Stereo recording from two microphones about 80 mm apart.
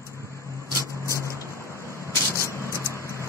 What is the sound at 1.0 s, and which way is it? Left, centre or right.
Vehicle, right.